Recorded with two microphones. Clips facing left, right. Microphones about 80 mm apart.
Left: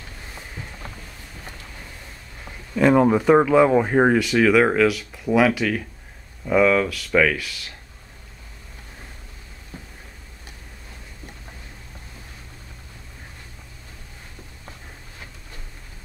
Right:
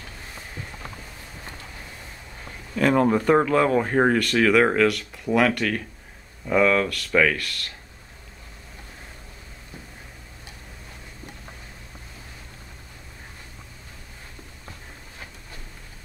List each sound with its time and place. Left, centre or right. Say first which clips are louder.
2.7 s speech: left 3 dB; centre